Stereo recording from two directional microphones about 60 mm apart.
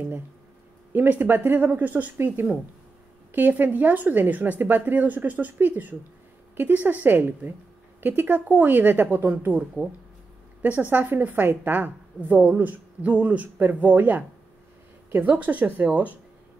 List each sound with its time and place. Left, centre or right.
0.9 s a woman's voice: right